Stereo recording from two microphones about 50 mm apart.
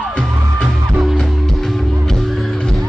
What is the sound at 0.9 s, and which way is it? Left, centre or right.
Music, centre.